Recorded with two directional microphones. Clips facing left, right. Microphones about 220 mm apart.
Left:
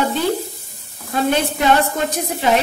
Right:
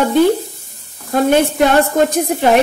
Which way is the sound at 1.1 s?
50° right (ahead or behind).